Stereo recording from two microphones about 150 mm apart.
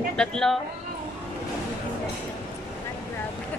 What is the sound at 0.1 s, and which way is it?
Speech, 5° left (ahead or behind).